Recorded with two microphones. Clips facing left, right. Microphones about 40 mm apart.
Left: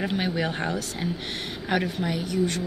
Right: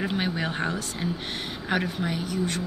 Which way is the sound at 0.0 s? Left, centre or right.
Centre.